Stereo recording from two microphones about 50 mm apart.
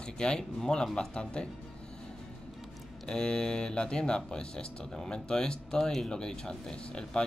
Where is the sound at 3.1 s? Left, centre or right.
Centre.